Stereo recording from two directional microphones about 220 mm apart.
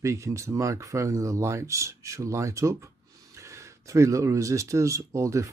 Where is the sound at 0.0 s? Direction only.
15° right (ahead or behind).